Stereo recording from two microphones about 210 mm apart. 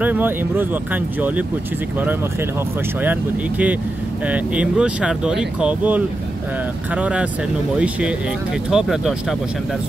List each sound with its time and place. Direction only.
0.0 s speech: 10° right (ahead or behind)
3.0 s speech: 10° right (ahead or behind)
8.6 s speech: 5° right (ahead or behind)